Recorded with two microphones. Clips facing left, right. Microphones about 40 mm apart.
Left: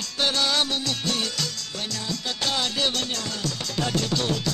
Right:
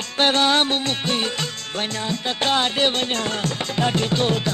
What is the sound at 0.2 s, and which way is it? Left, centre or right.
Music, right.